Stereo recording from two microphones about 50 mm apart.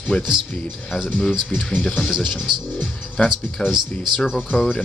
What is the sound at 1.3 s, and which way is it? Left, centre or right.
Speech, centre.